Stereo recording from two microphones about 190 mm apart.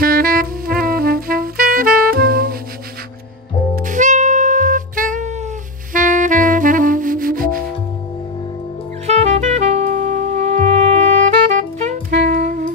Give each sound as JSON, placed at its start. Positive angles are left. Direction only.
{"t": 0.0, "sound": "music", "side_deg": -50}
{"t": 3.8, "sound": "music", "side_deg": -40}
{"t": 5.9, "sound": "saxophone", "side_deg": -40}
{"t": 9.0, "sound": "saxophone", "side_deg": -35}
{"t": 12.3, "sound": "saxophone", "side_deg": -50}